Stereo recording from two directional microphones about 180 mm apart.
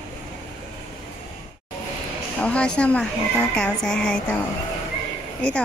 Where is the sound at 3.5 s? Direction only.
5° left (ahead or behind).